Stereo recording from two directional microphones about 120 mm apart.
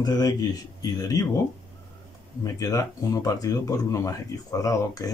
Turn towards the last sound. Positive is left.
turn(degrees=30)  # may be behind; listen again after turning